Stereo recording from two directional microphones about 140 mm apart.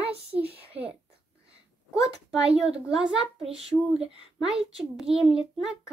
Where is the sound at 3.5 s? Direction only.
45° right (ahead or behind).